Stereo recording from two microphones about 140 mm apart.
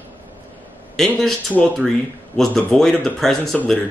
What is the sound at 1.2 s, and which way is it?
Speech, centre (ahead or behind).